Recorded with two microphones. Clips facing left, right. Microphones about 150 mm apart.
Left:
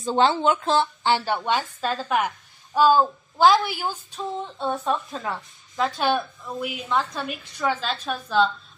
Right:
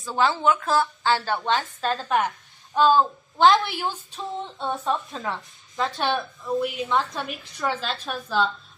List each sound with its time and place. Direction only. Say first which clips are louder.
0.0 s a woman's voice: left 2 dB; 25° left (ahead or behind)
1.8 s a woman's voice: even; centre (ahead or behind)